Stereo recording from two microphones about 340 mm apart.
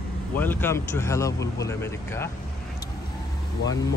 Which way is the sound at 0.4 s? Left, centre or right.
Centre.